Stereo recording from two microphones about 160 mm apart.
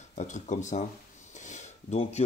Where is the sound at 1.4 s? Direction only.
45° left (ahead or behind).